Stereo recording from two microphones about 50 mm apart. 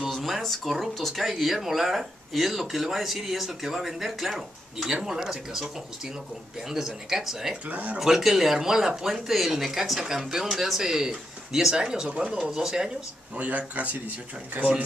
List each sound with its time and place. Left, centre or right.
0.1 s speech: centre
4.8 s speech: centre
7.6 s speech: right
8.0 s speech: centre
13.4 s speech: right